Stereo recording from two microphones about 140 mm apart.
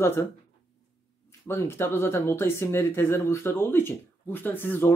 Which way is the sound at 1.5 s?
15° left (ahead or behind).